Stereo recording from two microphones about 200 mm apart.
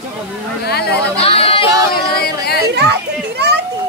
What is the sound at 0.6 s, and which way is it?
Speech, 55° left (ahead or behind).